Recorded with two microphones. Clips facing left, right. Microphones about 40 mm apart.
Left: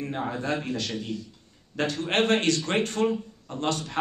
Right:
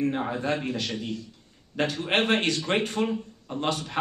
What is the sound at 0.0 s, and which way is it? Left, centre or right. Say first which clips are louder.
Speech: right 3 dB; centre.